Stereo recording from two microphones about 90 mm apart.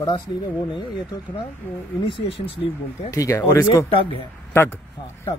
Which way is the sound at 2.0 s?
90° left.